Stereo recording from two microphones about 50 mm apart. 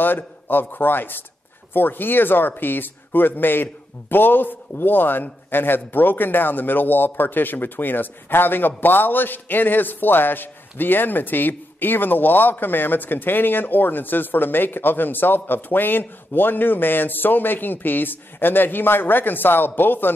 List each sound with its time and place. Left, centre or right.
0.0 s a man's voice: left